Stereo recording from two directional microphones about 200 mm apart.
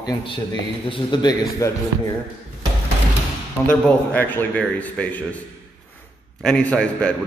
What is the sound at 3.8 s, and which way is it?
A man's voice, 10° left (ahead or behind).